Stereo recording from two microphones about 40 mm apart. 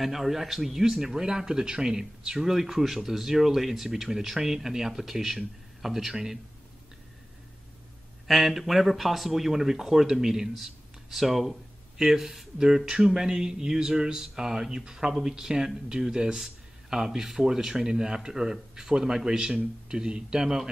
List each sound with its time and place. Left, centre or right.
0.0 s speech: centre
8.3 s speech: centre